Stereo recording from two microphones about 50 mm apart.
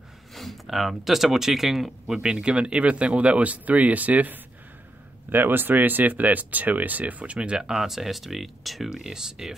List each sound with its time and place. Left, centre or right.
0.3 s speech: centre
2.1 s speech: right
5.3 s speech: right
7.6 s speech: centre